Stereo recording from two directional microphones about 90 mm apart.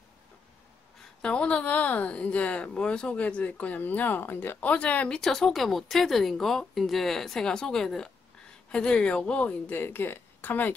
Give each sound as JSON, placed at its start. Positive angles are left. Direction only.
{"t": 1.2, "sound": "a woman's voice", "side_deg": 10}